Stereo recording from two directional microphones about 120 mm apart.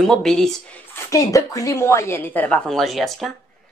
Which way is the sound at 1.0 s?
25° left (ahead or behind).